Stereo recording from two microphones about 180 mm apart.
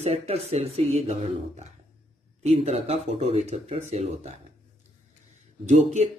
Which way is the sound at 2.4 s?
35° right (ahead or behind).